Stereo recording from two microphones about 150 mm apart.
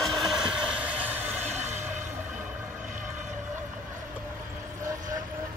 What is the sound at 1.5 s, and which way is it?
Music, 50° right (ahead or behind).